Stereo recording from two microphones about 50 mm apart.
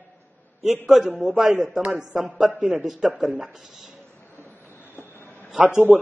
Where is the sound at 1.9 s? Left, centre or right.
Centre.